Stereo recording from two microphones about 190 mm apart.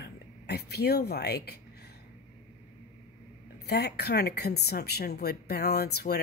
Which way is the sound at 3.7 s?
60° left (ahead or behind).